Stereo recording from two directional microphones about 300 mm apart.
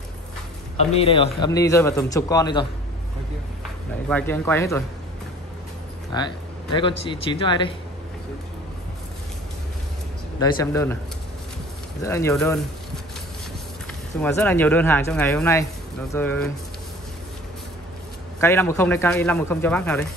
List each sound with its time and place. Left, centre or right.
0.9 s a man's voice: centre
4.1 s a man's voice: centre
6.1 s a man's voice: centre
10.4 s a man's voice: centre
12.0 s a man's voice: centre
14.2 s a man's voice: centre
18.4 s a man's voice: centre